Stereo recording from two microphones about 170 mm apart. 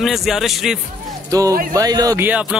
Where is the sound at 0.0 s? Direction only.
Centre (ahead or behind).